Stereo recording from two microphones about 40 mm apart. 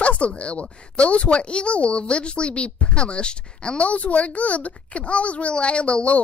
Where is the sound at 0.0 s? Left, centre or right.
Left.